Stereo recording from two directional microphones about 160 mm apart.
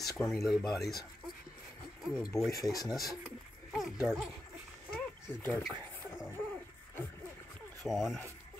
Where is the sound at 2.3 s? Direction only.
20° left (ahead or behind).